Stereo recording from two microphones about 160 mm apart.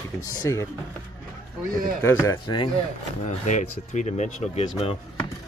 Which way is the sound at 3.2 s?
45° left (ahead or behind).